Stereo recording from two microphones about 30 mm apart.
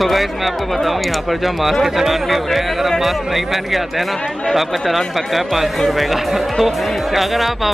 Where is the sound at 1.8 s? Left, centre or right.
Centre.